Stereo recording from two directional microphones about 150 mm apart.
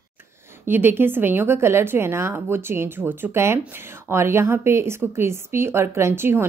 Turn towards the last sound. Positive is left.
turn(degrees=-15)  # may be behind; listen again after turning